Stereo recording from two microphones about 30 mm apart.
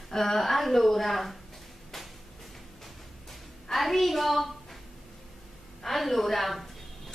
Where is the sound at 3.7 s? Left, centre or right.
Centre.